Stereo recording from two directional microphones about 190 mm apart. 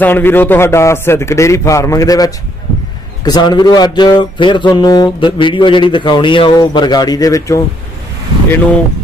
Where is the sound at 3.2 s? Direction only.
20° left (ahead or behind).